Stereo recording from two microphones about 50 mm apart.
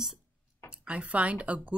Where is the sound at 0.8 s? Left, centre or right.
Right.